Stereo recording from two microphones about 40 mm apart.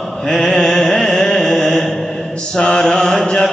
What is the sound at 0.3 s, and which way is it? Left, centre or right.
Mantra, centre.